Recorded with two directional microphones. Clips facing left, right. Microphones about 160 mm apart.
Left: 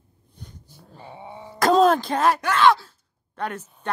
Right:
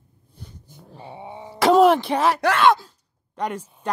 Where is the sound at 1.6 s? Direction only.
5° right (ahead or behind).